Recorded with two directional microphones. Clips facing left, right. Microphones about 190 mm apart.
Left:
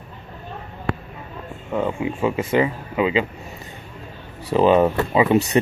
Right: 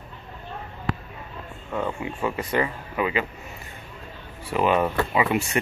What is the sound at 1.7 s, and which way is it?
Speech, 15° left (ahead or behind).